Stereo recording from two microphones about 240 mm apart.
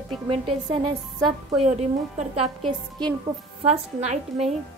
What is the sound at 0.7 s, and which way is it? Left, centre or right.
A woman's voice, centre.